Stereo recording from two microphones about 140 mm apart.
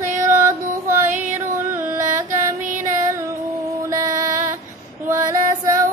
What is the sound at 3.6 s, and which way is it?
Music, 20° right (ahead or behind).